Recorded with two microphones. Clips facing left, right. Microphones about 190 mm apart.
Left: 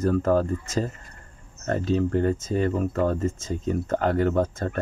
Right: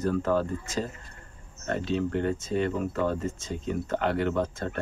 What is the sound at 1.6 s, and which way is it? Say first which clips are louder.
Speech: left 4 dB; 40° left (ahead or behind).